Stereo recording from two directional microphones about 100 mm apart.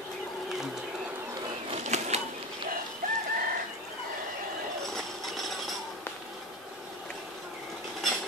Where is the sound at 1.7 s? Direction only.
90° right.